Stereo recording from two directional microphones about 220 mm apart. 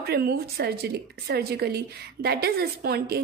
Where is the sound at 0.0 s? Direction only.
45° right (ahead or behind).